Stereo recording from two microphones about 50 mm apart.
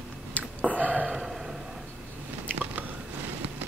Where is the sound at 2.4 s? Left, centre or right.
Right.